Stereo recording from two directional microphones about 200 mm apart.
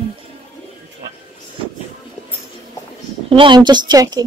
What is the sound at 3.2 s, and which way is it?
A woman's voice, 25° right (ahead or behind).